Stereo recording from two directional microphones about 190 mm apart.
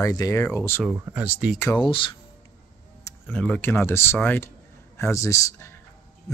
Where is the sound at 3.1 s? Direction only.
10° left (ahead or behind).